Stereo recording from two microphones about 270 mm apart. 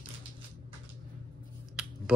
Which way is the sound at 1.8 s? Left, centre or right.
Centre.